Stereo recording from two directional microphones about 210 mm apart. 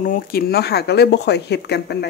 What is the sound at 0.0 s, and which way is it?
Speech, 45° left (ahead or behind).